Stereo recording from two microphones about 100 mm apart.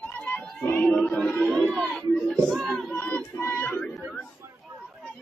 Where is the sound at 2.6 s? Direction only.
5° left (ahead or behind).